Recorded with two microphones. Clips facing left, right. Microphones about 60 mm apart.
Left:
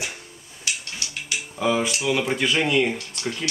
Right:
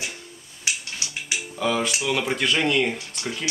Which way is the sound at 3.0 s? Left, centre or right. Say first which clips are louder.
Left 1 dB; centre.